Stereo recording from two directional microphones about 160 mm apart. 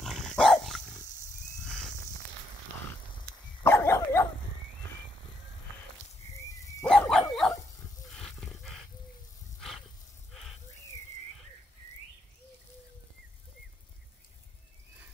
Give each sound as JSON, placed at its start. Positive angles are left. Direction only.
{"t": 0.0, "sound": "dog", "side_deg": 5}
{"t": 3.6, "sound": "dog", "side_deg": 15}
{"t": 6.9, "sound": "dog", "side_deg": 5}
{"t": 8.1, "sound": "wild animals", "side_deg": 0}